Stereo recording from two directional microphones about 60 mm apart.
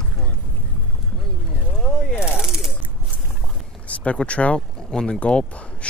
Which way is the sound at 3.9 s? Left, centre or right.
Left.